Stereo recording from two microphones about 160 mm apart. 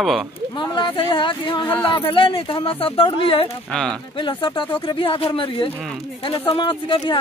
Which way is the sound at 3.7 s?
5° left (ahead or behind).